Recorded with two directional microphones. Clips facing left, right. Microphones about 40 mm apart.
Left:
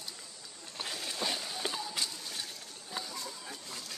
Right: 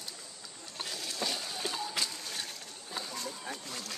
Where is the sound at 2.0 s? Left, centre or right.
Right.